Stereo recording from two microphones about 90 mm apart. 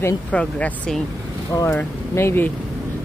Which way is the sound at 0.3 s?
15° left (ahead or behind).